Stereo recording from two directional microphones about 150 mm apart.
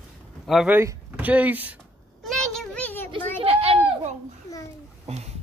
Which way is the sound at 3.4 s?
40° right (ahead or behind).